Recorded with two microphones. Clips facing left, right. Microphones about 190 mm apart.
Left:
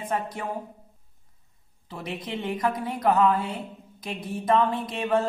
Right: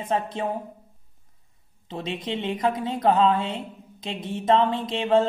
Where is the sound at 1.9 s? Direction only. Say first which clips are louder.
Right 4 dB; 25° right (ahead or behind).